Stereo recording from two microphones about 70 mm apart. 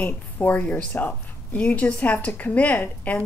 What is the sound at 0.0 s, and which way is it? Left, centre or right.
A woman's voice, left.